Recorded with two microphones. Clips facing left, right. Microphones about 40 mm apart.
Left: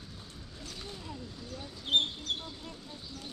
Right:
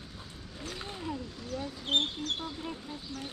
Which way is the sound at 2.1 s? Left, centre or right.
Right.